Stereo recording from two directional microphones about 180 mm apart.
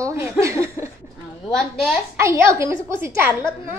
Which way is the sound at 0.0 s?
15° right (ahead or behind).